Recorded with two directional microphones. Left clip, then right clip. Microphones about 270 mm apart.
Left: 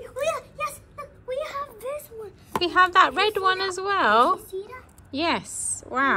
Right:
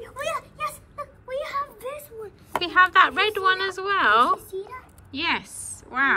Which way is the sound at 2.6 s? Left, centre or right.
Centre.